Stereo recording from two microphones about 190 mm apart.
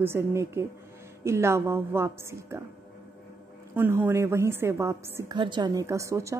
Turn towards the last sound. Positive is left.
turn(degrees=-15)  # may be behind; listen again after turning